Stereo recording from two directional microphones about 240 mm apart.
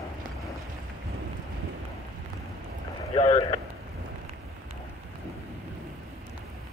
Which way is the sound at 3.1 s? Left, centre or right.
Centre.